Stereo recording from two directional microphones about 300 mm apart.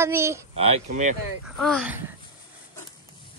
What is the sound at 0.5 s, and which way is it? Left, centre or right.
Speech, right.